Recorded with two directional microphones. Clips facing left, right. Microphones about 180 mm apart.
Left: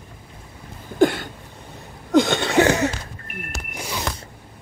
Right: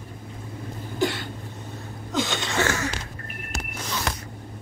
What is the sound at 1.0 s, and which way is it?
Cough, 55° left (ahead or behind).